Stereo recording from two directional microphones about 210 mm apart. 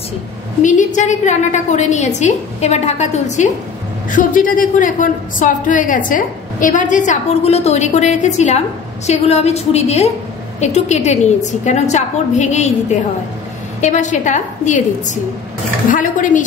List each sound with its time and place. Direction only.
0.6 s a woman's voice: 35° left (ahead or behind)
13.7 s a woman's voice: 35° left (ahead or behind)